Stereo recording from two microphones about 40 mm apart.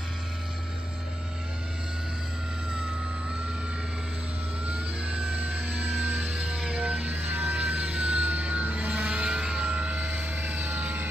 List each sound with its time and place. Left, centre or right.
4.6 s vehicle: right
9.7 s vehicle: right
9.9 s vehicle: right